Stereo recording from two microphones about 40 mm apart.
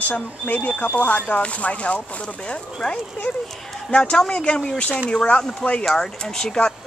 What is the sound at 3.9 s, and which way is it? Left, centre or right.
Speech, left.